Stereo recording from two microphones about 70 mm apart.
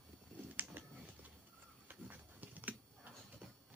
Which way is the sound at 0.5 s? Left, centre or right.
Right.